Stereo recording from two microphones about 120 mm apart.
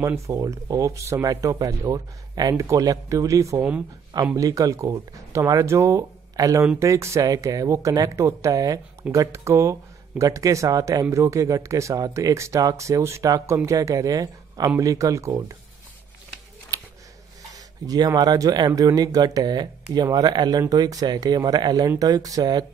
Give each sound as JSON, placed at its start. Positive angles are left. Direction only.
{"t": 0.0, "sound": "speech", "side_deg": -25}
{"t": 16.7, "sound": "a sound", "side_deg": -25}
{"t": 17.5, "sound": "speech", "side_deg": -30}